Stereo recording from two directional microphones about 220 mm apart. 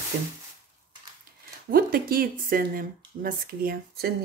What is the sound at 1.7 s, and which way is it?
Speech, 40° right (ahead or behind).